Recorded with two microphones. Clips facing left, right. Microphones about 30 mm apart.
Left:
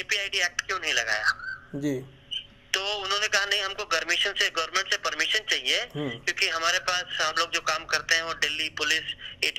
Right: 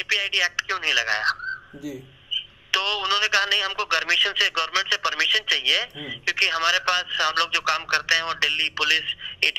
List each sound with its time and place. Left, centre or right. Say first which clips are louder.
0.1 s speech: right 5 dB; right